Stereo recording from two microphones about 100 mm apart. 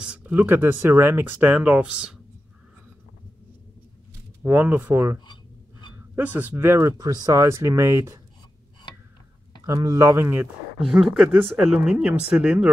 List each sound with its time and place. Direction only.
0.0 s speech: 10° right (ahead or behind)
4.4 s speech: 20° right (ahead or behind)
5.2 s writing: 50° left (ahead or behind)
6.1 s speech: 20° right (ahead or behind)
6.9 s speech: 40° right (ahead or behind)
9.7 s speech: 35° right (ahead or behind)
10.8 s speech: centre (ahead or behind)